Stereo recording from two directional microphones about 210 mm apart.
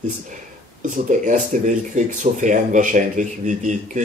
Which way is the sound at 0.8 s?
35° right (ahead or behind).